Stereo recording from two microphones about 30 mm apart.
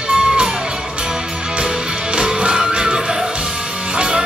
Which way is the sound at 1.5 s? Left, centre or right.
Right.